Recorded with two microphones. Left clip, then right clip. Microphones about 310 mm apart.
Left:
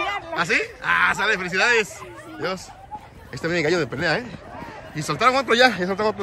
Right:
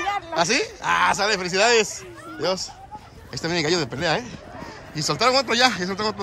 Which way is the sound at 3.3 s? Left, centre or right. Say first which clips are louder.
Left 1 dB; centre.